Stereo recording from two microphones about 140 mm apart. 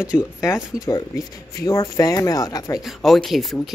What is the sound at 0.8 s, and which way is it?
Speech, 25° left (ahead or behind).